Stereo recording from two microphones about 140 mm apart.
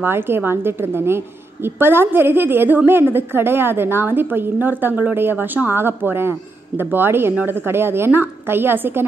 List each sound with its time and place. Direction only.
0.0 s a woman's voice: 15° right (ahead or behind)